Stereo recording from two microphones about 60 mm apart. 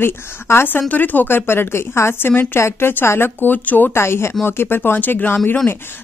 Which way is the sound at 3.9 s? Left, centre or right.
Left.